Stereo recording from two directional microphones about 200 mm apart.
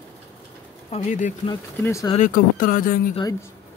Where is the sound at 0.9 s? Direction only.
35° left (ahead or behind).